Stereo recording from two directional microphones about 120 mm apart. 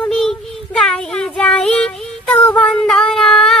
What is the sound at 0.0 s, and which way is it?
Child singing, 5° left (ahead or behind).